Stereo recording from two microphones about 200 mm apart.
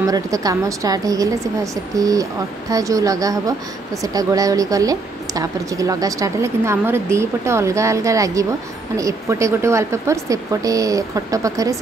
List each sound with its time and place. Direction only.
0.0 s a woman's voice: 15° right (ahead or behind)